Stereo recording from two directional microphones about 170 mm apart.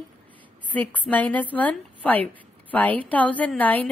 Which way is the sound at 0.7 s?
10° left (ahead or behind).